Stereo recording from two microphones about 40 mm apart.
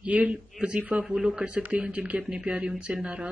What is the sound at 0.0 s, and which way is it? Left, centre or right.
Speech, right.